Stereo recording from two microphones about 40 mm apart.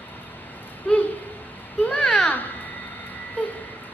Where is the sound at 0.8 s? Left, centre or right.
Left.